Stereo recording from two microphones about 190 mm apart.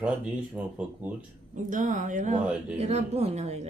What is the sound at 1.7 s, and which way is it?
A woman's voice, 40° right (ahead or behind).